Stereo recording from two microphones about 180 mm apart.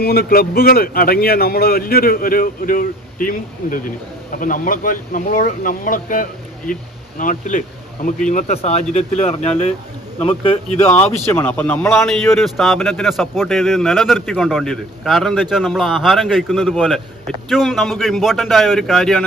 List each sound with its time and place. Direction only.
0.0 s a man's voice: 55° left (ahead or behind); by 10.6 s 30° left (ahead or behind)
10.8 s a man's voice: 10° left (ahead or behind)
12.4 s a man's voice: centre (ahead or behind)